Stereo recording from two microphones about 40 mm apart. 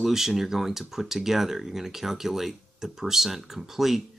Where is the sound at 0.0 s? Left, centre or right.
Centre.